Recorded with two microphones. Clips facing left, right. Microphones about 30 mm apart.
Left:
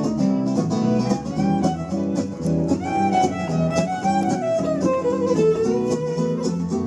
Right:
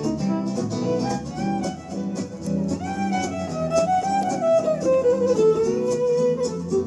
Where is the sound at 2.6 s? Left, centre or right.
Left.